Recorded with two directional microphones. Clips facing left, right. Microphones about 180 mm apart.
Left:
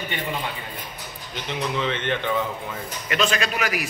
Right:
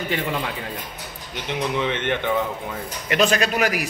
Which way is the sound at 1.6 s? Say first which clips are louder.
Right 2 dB; 15° right (ahead or behind).